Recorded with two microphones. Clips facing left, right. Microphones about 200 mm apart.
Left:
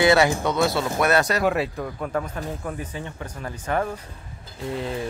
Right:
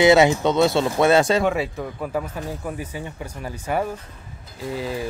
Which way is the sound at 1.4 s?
Centre (ahead or behind).